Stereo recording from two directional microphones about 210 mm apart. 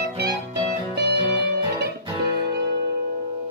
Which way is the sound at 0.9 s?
50° right (ahead or behind).